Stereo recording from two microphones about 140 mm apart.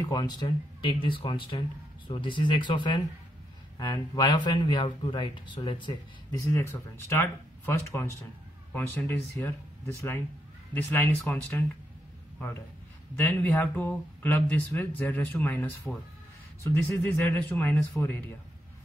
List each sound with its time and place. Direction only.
0.1 s speech: 30° left (ahead or behind)
6.4 s speech: 20° left (ahead or behind)
13.1 s speech: 15° left (ahead or behind)